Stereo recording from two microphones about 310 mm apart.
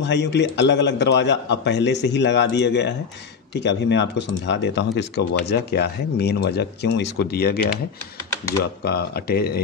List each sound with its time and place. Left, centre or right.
0.0 s a man's voice: left
8.8 s a man's voice: left